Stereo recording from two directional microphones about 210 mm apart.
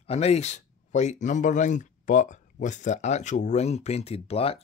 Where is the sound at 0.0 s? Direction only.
30° left (ahead or behind).